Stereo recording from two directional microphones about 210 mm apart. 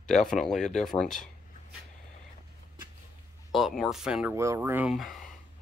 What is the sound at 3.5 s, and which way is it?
Speech, centre (ahead or behind).